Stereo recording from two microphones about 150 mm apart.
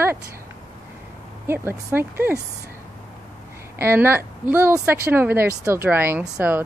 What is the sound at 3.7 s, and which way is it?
A woman's voice, 15° right (ahead or behind).